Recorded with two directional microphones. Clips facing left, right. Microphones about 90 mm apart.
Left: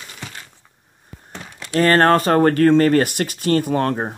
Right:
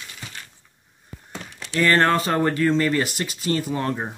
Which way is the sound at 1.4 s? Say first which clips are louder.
Left 4 dB; 45° left (ahead or behind).